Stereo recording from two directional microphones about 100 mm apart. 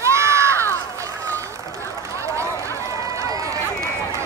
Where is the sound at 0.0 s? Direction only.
30° right (ahead or behind).